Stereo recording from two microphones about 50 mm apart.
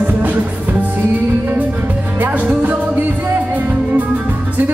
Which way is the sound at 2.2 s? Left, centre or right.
Right.